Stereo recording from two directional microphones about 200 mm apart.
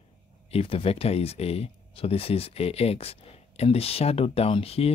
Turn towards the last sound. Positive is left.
turn(degrees=30)  # may be behind; listen again after turning